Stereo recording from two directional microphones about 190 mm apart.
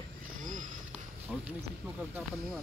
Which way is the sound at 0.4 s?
45° right (ahead or behind).